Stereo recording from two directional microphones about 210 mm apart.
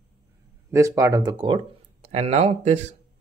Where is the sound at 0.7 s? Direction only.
15° right (ahead or behind); by 2.8 s 35° right (ahead or behind).